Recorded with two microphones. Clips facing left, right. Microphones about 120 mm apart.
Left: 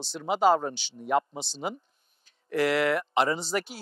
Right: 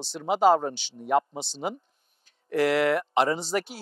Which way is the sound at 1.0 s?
50° right (ahead or behind).